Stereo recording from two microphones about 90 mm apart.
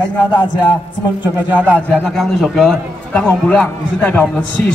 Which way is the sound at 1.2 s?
20° right (ahead or behind).